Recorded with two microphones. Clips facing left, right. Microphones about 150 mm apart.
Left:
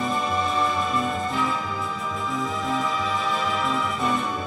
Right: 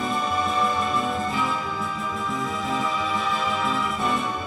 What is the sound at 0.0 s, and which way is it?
Music, centre (ahead or behind).